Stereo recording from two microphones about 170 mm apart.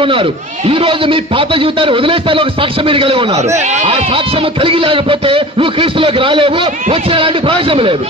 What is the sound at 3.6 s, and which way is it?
A man's voice, 45° right (ahead or behind).